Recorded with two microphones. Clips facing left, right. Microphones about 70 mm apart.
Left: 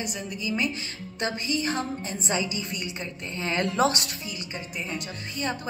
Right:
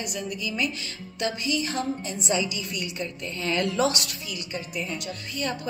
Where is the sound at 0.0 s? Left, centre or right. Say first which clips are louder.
Right 1 dB; left.